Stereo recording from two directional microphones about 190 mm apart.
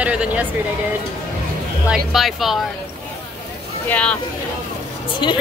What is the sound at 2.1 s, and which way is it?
Speech, centre (ahead or behind).